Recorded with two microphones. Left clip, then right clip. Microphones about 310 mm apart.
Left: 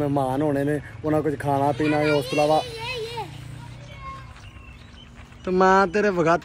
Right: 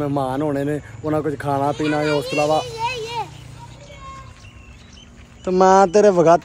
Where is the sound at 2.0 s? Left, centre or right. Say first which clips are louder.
Right 1 dB; right.